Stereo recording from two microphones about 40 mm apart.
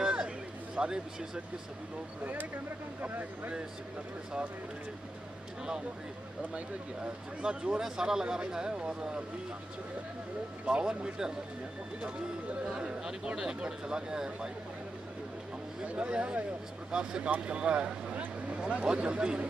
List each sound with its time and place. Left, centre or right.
0.0 s a sound: right
0.7 s speech: right
3.0 s speech: right
7.4 s speech: right
10.6 s speech: right
12.6 s speech: right
15.8 s speech: right